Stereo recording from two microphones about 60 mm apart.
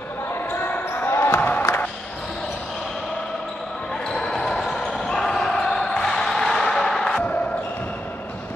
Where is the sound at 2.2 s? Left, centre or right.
Centre.